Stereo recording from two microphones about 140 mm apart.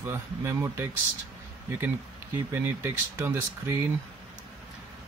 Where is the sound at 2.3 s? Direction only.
15° right (ahead or behind).